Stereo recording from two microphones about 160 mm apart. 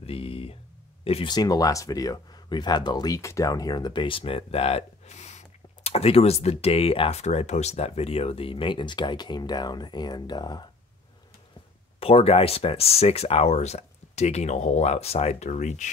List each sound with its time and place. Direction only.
0.0 s a sound: 35° left (ahead or behind)
1.0 s speech: 40° left (ahead or behind)
1.3 s speech: 25° left (ahead or behind)
12.0 s speech: 35° left (ahead or behind)